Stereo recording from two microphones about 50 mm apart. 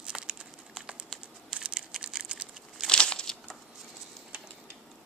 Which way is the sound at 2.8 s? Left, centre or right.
Centre.